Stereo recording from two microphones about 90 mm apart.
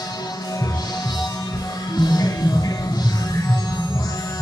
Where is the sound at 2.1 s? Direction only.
45° left (ahead or behind).